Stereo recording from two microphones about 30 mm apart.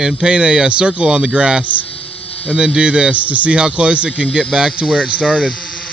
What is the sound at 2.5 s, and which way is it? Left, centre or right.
Speech, right.